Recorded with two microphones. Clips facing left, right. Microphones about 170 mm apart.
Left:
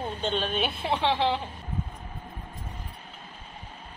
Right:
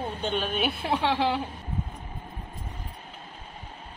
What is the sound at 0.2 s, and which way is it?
Speech, 10° right (ahead or behind).